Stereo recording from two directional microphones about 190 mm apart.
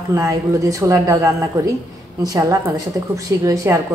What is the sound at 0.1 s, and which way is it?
A woman's voice, 15° right (ahead or behind).